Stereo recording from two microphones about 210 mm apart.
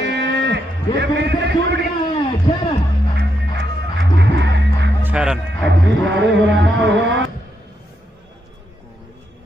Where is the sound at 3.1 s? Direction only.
55° right (ahead or behind).